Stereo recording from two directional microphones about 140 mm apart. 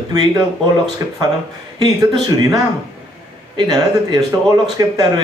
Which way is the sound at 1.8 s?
30° right (ahead or behind).